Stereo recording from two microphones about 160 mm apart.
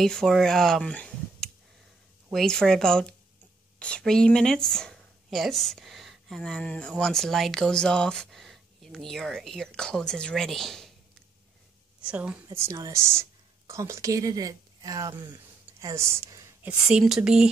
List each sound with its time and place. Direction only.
0.0 s speech: centre (ahead or behind)
12.0 s a woman's voice: 10° right (ahead or behind)
12.4 s speech: 20° right (ahead or behind)
16.6 s speech: 5° right (ahead or behind)